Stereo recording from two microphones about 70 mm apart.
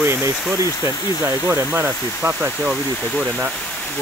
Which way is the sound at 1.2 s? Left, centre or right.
Right.